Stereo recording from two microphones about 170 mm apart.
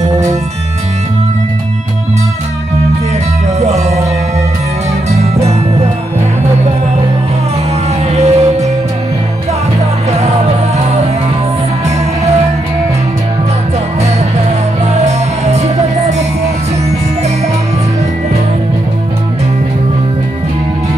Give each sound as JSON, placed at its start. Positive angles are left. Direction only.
{"t": 3.5, "sound": "music", "side_deg": -40}
{"t": 5.2, "sound": "music", "side_deg": -40}
{"t": 8.2, "sound": "music", "side_deg": -40}
{"t": 15.0, "sound": "music", "side_deg": -40}